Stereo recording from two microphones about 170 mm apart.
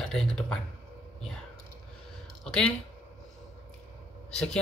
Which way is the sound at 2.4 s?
5° left (ahead or behind).